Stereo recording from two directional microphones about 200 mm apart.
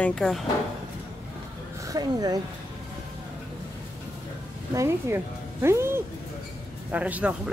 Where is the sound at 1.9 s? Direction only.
20° right (ahead or behind).